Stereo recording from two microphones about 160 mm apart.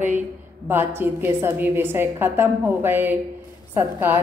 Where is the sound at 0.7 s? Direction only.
15° right (ahead or behind).